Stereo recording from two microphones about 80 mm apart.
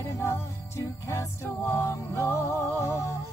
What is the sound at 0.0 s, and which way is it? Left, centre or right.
Music, left.